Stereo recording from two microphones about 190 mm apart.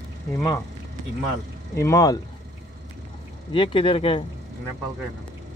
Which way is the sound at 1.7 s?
15° left (ahead or behind).